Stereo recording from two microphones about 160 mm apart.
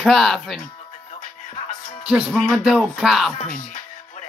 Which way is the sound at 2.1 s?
Centre (ahead or behind).